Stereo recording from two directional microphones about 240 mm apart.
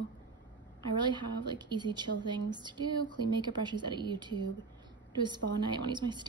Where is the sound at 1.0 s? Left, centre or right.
Centre.